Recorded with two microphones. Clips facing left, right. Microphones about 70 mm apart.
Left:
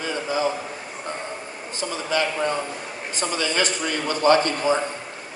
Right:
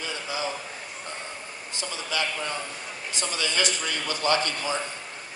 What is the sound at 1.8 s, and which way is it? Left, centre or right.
A man's voice, left.